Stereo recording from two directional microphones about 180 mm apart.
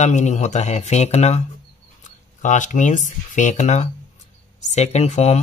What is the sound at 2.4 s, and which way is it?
Speech, 45° left (ahead or behind).